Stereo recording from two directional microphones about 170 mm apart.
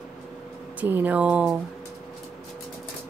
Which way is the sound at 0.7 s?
10° right (ahead or behind).